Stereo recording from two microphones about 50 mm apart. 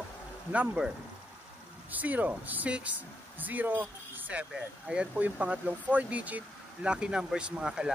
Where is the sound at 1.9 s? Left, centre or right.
Right.